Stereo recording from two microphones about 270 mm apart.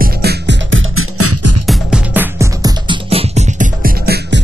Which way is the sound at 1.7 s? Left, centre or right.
Centre.